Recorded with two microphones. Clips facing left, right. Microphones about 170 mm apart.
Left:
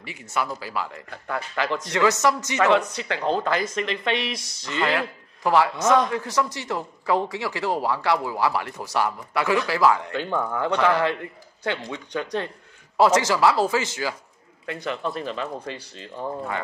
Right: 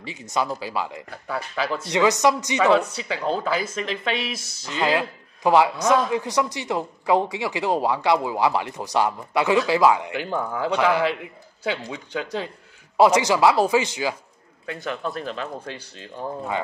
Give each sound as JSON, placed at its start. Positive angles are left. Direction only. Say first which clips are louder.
{"t": 0.0, "sound": "speech", "louder": "right 2 dB", "side_deg": -20}
{"t": 1.1, "sound": "speech", "louder": "left 1 dB", "side_deg": -5}
{"t": 4.9, "sound": "speech", "louder": "right 2 dB", "side_deg": -15}
{"t": 12.9, "sound": "speech", "louder": "right 2 dB", "side_deg": -15}
{"t": 14.7, "sound": "speech", "louder": "even", "side_deg": 0}